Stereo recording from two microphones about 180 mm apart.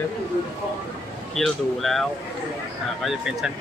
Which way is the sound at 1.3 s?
Centre (ahead or behind).